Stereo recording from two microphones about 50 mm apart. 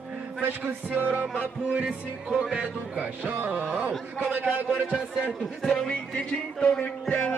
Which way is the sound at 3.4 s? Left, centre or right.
Right.